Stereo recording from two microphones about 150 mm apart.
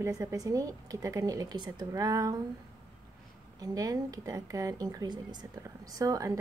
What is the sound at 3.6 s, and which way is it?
Speech, 25° right (ahead or behind).